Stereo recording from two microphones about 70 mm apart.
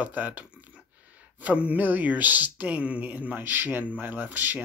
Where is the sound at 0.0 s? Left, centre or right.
Right.